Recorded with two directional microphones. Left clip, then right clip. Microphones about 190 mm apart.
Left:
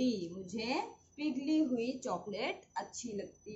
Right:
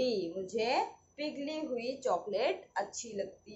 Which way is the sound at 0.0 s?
10° left (ahead or behind).